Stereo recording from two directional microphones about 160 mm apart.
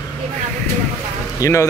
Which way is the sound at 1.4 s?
20° left (ahead or behind).